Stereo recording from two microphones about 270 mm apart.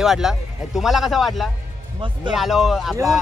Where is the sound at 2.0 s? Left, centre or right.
Centre.